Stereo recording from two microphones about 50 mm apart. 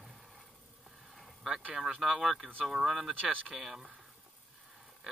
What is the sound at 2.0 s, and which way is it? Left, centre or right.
Speech, centre.